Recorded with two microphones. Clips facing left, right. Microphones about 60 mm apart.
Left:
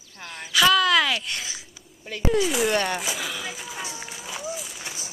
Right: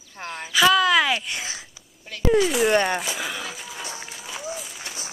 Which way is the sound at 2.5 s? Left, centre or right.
Centre.